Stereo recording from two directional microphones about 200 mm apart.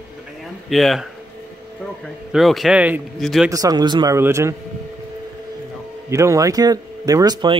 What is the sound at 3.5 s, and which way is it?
Speech, 15° right (ahead or behind).